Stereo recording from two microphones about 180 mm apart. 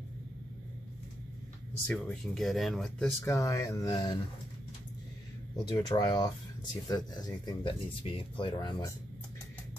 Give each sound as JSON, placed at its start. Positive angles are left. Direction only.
{"t": 1.9, "sound": "speech", "side_deg": 5}
{"t": 3.2, "sound": "speech", "side_deg": 15}
{"t": 5.8, "sound": "speech", "side_deg": 20}